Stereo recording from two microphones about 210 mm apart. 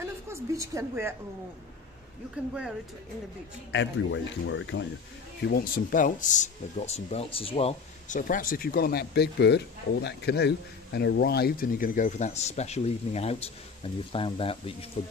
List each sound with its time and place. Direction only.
0.0 s a woman's voice: 15° right (ahead or behind)
2.3 s speech: 5° right (ahead or behind)
3.7 s speech: 60° left (ahead or behind)
5.5 s speech: 45° left (ahead or behind); by 14.9 s 25° left (ahead or behind)